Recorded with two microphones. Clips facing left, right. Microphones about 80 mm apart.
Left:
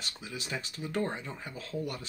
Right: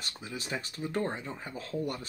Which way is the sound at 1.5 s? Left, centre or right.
Right.